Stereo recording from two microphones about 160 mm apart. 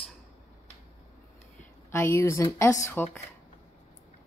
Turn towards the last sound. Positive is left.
turn(degrees=10)  # may be behind; listen again after turning